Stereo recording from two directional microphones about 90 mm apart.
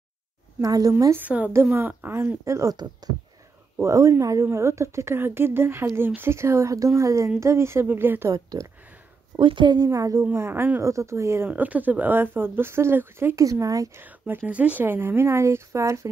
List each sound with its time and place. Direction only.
0.6 s a woman's voice: 45° right (ahead or behind)
1.1 s a woman's voice: 20° right (ahead or behind)
3.8 s a woman's voice: 35° right (ahead or behind)
8.3 s a woman's voice: 40° right (ahead or behind)
9.4 s a woman's voice: 65° right (ahead or behind)
9.8 s a woman's voice: 40° right (ahead or behind)
10.3 s a woman's voice: 30° right (ahead or behind)
11.4 s a woman's voice: 20° right (ahead or behind)
13.4 s a woman's voice: 40° right (ahead or behind)
13.9 s a woman's voice: 20° right (ahead or behind)